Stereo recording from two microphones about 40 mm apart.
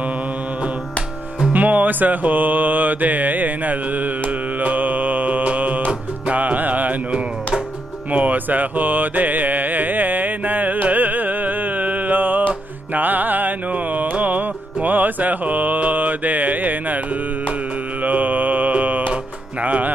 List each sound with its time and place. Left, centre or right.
1.5 s music: right
4.6 s mantra: right
6.3 s music: right
8.1 s music: right
18.0 s mantra: right
19.6 s music: right